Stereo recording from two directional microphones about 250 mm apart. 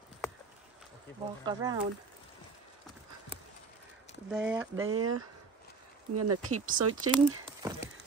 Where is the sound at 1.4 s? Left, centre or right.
Centre.